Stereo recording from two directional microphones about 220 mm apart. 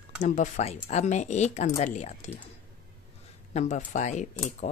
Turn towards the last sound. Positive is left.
turn(degrees=30)  # may be behind; listen again after turning